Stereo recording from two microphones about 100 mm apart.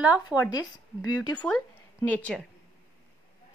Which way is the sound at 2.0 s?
15° left (ahead or behind).